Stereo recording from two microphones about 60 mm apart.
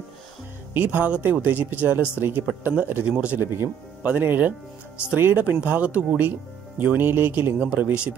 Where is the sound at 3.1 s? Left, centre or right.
Right.